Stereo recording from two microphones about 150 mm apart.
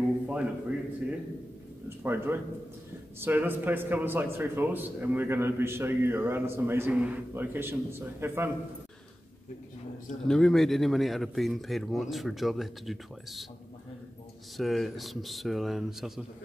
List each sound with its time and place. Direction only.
0.3 s a man's voice: 10° right (ahead or behind)
1.9 s a man's voice: 15° right (ahead or behind)
10.2 s speech: 5° left (ahead or behind)
14.6 s speech: centre (ahead or behind)